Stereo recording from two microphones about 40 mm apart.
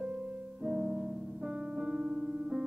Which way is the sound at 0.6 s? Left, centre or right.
Centre.